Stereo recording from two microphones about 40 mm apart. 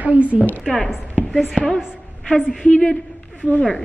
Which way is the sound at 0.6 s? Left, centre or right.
Left.